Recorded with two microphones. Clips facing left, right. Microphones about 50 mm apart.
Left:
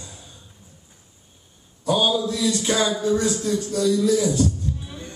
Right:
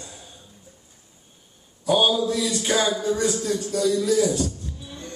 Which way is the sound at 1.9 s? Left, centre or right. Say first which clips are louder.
Right 1 dB; centre.